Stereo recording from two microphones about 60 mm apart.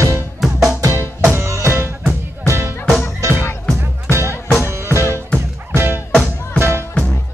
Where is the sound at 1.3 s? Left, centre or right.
Right.